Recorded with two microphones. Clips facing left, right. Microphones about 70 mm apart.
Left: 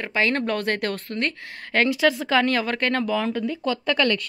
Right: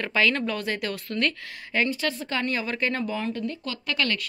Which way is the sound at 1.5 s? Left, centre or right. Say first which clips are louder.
Left 4 dB; left.